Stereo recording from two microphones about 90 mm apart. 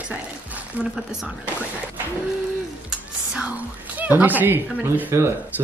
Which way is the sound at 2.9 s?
10° right (ahead or behind).